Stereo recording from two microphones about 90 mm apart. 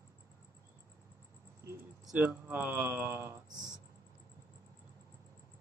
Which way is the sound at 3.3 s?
45° right (ahead or behind).